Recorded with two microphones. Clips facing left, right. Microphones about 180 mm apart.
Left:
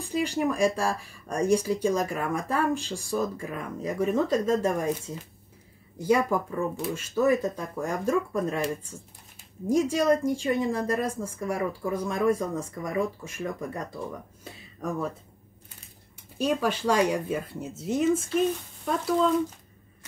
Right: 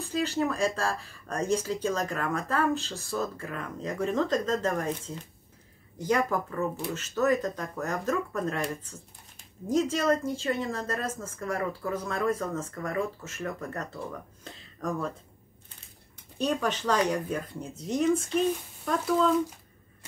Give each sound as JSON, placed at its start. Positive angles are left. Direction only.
{"t": 0.0, "sound": "speech", "side_deg": 15}
{"t": 9.7, "sound": "speech", "side_deg": 15}
{"t": 14.4, "sound": "a sound", "side_deg": 5}
{"t": 16.3, "sound": "speech", "side_deg": 10}